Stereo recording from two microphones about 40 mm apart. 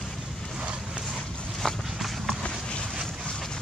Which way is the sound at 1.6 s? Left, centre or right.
Centre.